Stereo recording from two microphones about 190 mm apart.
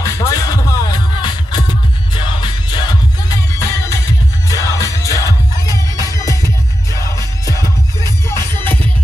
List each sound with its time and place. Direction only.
0.0 s music: 15° left (ahead or behind)